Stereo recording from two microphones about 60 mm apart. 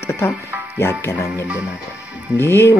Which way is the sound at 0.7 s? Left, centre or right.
Left.